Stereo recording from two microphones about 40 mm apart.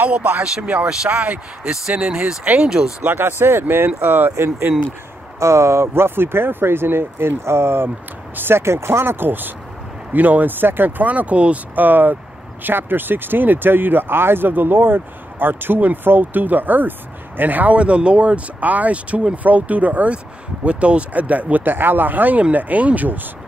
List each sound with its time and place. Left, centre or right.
0.4 s speech: right
1.6 s speech: right
3.1 s speech: right
3.6 s speech: right
5.8 s speech: right
10.1 s speech: right
11.3 s speech: right
11.7 s speech: right
17.7 s speech: right
21.6 s speech: right